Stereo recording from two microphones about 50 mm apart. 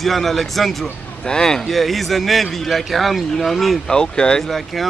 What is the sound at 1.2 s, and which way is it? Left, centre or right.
Speech, centre.